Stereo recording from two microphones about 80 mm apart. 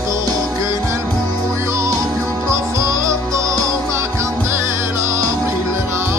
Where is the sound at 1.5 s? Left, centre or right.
Right.